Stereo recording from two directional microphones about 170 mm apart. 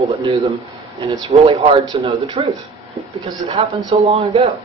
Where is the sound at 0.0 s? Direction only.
35° right (ahead or behind).